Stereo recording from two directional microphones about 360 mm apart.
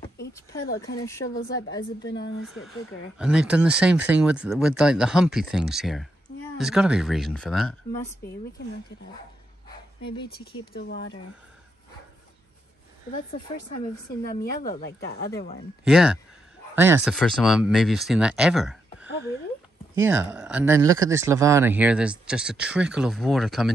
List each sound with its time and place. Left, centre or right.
1.0 s speech: centre
2.0 s a woman's voice: left
2.4 s speech: centre
9.7 s a sound: centre
10.2 s a woman's voice: left
14.3 s a woman's voice: left
15.0 s speech: centre
15.8 s speech: centre
19.0 s a woman's voice: left
20.0 s speech: centre